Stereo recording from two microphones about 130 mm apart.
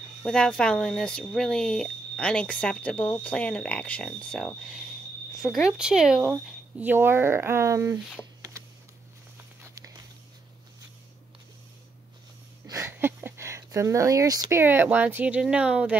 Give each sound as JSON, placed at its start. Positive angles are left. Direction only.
{"t": 0.2, "sound": "speech", "side_deg": 5}
{"t": 6.8, "sound": "speech", "side_deg": -15}
{"t": 12.6, "sound": "a sound", "side_deg": -20}
{"t": 14.6, "sound": "speech", "side_deg": -15}